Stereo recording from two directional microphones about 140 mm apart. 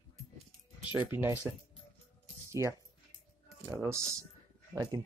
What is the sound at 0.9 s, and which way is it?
Speech, 15° right (ahead or behind).